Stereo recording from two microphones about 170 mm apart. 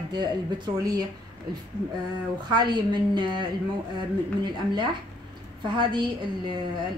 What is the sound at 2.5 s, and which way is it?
Speech, 25° right (ahead or behind).